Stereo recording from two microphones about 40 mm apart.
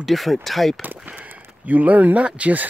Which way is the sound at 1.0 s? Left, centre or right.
Right.